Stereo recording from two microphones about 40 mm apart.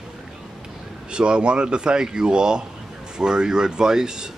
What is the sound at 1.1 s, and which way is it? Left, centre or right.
Speech, right.